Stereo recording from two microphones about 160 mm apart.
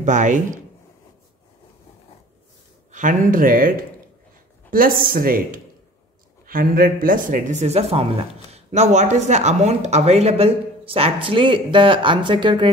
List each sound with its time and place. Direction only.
0.0 s speech: 50° right (ahead or behind)
2.9 s speech: 50° right (ahead or behind); by 12.7 s 30° right (ahead or behind)